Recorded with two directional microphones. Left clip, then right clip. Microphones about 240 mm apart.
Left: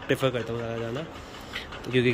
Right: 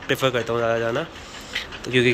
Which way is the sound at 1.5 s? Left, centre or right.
Centre.